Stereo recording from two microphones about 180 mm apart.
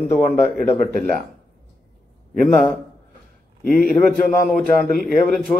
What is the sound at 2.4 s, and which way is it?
Speech, 15° left (ahead or behind).